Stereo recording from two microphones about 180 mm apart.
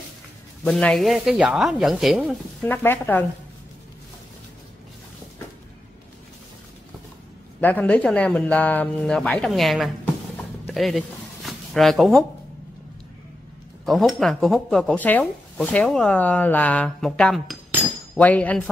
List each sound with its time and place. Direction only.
0.7 s speech: 5° left (ahead or behind)
2.7 s speech: 10° left (ahead or behind)
7.6 s speech: 10° left (ahead or behind)
10.7 s a sound: centre (ahead or behind)
13.8 s speech: centre (ahead or behind)